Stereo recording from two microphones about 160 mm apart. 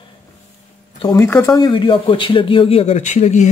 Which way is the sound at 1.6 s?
30° left (ahead or behind).